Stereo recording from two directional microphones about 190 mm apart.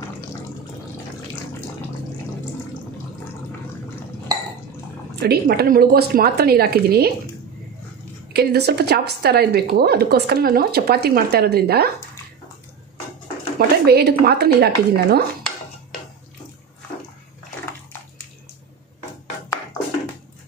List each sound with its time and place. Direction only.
5.2 s a woman's voice: 55° right (ahead or behind)
8.3 s a woman's voice: 60° right (ahead or behind)
13.6 s a woman's voice: 55° right (ahead or behind)